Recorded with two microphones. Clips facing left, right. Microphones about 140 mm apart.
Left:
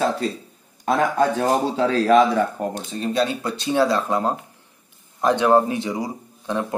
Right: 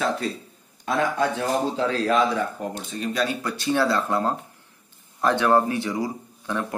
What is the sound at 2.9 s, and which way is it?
Speech, 30° left (ahead or behind).